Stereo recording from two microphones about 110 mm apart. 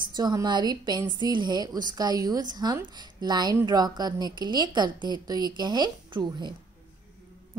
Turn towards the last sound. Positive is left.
turn(degrees=-45)  # may be behind; listen again after turning